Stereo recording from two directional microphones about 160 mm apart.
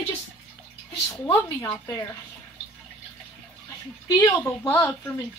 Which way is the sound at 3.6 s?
20° left (ahead or behind).